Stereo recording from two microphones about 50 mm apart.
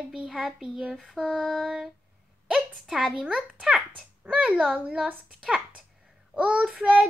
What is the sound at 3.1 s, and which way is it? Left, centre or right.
A child's voice, right.